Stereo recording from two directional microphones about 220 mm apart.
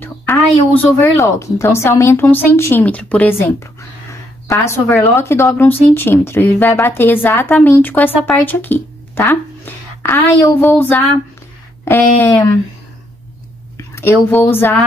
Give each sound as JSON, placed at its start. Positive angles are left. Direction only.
{"t": 0.0, "sound": "speech", "side_deg": 10}
{"t": 13.9, "sound": "speech", "side_deg": 10}